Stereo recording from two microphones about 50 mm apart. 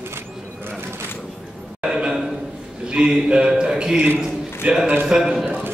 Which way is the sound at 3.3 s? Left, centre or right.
Centre.